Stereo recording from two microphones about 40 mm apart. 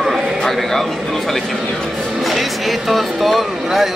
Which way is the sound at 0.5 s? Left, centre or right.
Centre.